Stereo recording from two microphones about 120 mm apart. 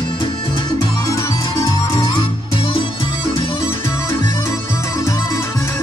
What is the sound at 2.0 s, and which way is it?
Music, 45° left (ahead or behind).